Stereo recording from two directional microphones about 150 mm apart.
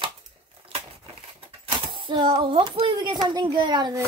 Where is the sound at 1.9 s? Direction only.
35° right (ahead or behind).